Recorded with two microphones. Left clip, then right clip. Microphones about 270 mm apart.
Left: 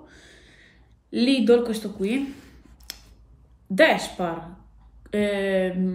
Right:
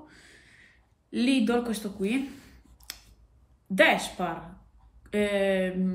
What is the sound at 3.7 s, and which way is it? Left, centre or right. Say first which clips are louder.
Speech: left 3 dB; centre.